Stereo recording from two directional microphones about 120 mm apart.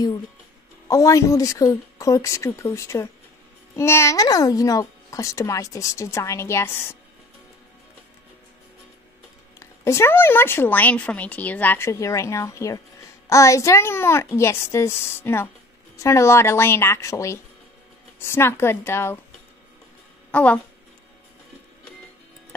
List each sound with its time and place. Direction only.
0.8 s a child's voice: 30° left (ahead or behind)
9.6 s a child's voice: 20° left (ahead or behind)
20.2 s a woman's voice: 10° left (ahead or behind)